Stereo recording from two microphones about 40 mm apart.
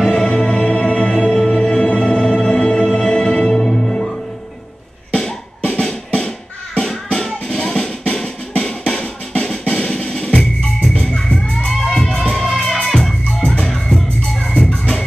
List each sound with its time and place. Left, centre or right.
0.0 s music: centre
0.3 s music: centre
3.5 s music: centre
5.7 s music: centre
8.8 s music: left
11.7 s music: centre
13.2 s music: left